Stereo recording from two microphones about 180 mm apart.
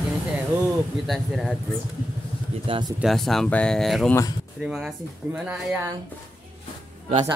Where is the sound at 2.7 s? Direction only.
25° right (ahead or behind).